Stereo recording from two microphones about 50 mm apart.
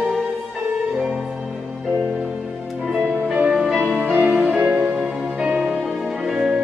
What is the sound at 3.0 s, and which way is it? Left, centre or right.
Music, right.